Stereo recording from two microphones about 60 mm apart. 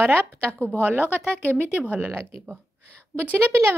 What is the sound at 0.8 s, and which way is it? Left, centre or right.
Speech, right.